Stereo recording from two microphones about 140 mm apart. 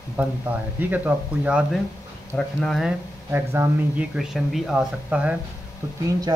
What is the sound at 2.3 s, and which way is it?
Speech, 5° left (ahead or behind).